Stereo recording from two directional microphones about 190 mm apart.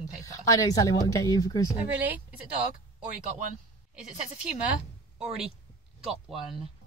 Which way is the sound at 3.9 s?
5° right (ahead or behind).